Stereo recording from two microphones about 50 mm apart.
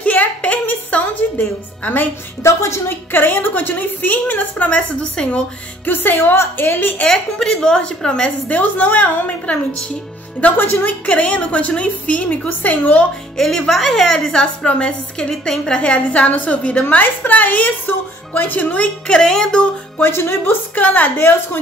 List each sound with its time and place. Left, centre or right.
0.0 s a sound: left
2.4 s a woman's voice: left
3.1 s a woman's voice: left
5.9 s a woman's voice: left
7.1 s a woman's voice: centre
8.5 s a woman's voice: left
11.1 s a woman's voice: left
13.7 s a woman's voice: centre; by 16.8 s left
16.9 s a woman's voice: left
19.0 s a woman's voice: centre
20.0 s speech: left
20.7 s a woman's voice: left
21.2 s a woman's voice: left